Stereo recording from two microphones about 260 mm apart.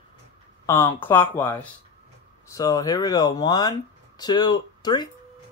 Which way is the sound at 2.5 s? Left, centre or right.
Centre.